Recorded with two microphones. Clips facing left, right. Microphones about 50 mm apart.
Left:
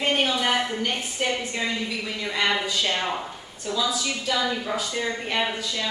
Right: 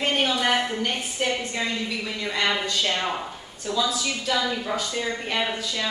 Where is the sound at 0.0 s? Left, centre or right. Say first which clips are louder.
Even; centre.